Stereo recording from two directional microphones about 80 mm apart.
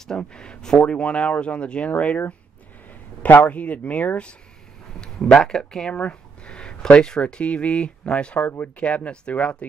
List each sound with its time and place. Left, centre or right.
0.2 s speech: centre
5.0 s speech: centre